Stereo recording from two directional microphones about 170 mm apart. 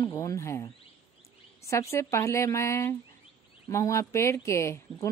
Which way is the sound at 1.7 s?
15° left (ahead or behind).